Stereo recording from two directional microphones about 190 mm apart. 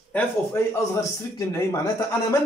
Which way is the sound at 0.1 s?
15° left (ahead or behind).